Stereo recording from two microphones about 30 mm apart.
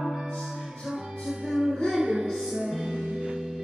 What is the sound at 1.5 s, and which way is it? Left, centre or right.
Music, centre.